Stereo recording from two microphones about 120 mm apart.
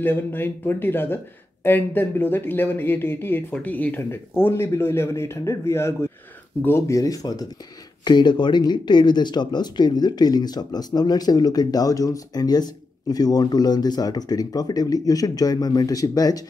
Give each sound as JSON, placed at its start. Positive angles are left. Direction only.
{"t": 0.0, "sound": "speech", "side_deg": 15}